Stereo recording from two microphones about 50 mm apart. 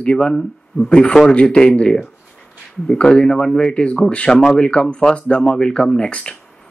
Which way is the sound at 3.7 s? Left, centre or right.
Centre.